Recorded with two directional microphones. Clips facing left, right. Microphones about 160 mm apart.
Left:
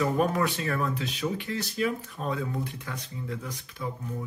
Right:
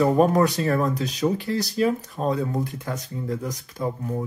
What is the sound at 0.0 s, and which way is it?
Speech, 35° right (ahead or behind).